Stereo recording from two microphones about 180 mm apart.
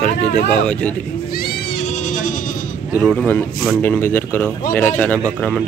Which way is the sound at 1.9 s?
45° left (ahead or behind).